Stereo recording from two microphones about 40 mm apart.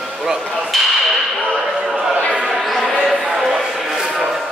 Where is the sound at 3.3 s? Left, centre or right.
Centre.